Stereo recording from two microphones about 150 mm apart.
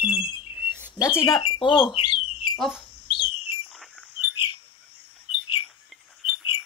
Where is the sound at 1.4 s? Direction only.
30° left (ahead or behind).